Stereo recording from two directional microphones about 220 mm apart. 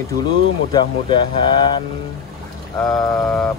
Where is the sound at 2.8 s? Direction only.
5° left (ahead or behind).